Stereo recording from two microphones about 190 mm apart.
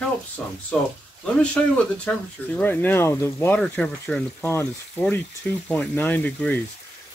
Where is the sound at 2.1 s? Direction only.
10° left (ahead or behind).